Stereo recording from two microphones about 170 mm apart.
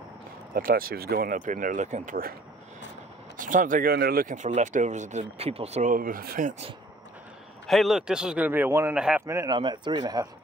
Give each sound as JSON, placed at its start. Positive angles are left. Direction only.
{"t": 0.6, "sound": "speech", "side_deg": -60}
{"t": 3.3, "sound": "speech", "side_deg": -50}
{"t": 7.6, "sound": "speech", "side_deg": 0}
{"t": 9.2, "sound": "speech", "side_deg": -15}
{"t": 9.6, "sound": "speech", "side_deg": -30}